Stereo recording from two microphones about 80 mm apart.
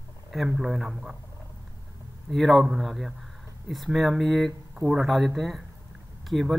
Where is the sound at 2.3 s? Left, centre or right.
Centre.